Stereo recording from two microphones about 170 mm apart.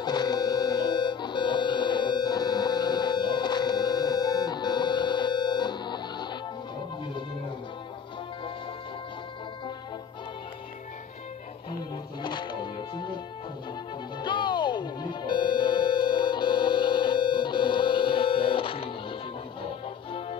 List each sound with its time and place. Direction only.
0.0 s a sound: 25° left (ahead or behind)
12.2 s music: 25° left (ahead or behind)
14.2 s music: 25° left (ahead or behind)